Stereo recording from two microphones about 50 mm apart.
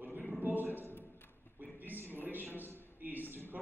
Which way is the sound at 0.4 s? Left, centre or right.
Right.